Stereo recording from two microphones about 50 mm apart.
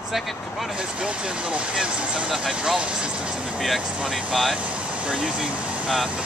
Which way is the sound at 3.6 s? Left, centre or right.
Centre.